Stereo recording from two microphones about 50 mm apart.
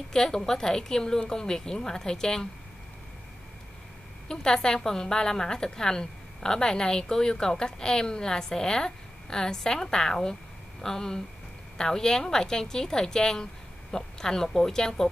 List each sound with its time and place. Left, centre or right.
0.1 s a woman's voice: centre
4.3 s a woman's voice: centre